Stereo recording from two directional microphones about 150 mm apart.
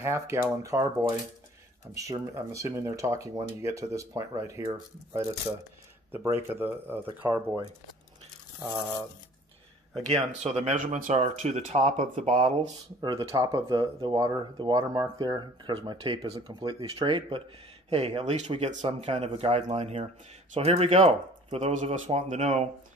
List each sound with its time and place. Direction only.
0.0 s speech: 20° right (ahead or behind)
6.5 s speech: 15° right (ahead or behind)
9.9 s speech: 45° right (ahead or behind)
13.0 s speech: 25° right (ahead or behind); by 22.7 s 45° right (ahead or behind)